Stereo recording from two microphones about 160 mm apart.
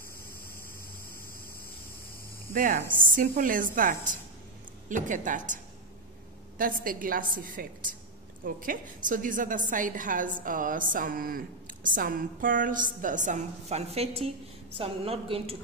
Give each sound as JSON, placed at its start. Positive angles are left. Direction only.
{"t": 2.5, "sound": "a woman's voice", "side_deg": -60}
{"t": 6.6, "sound": "a woman's voice", "side_deg": -60}